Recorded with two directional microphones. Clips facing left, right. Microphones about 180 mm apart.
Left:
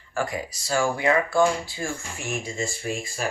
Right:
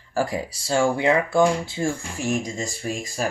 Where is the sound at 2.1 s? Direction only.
40° right (ahead or behind).